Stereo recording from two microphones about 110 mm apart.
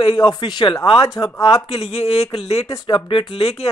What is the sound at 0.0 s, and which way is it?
Speech, 40° left (ahead or behind).